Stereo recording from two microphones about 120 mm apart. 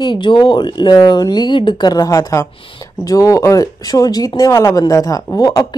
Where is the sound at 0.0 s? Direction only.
40° left (ahead or behind).